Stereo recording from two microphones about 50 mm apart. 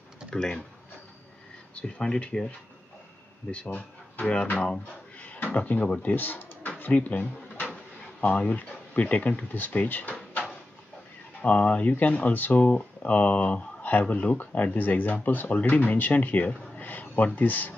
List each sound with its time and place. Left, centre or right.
0.3 s speech: centre
1.8 s speech: centre
3.6 s speech: left
5.3 s speech: left
6.1 s speech: left
6.8 s speech: left
11.4 s speech: left